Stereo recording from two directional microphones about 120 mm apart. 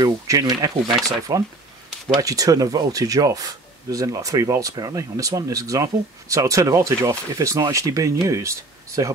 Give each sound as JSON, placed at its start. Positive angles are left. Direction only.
{"t": 0.0, "sound": "speech", "side_deg": -30}